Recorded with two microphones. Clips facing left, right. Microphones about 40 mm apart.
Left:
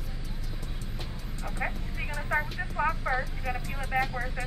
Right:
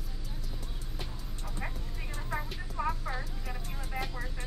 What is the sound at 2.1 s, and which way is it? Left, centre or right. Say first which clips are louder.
Vehicle: left 8 dB; left.